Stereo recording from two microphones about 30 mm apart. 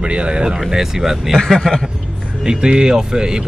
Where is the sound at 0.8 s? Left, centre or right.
Centre.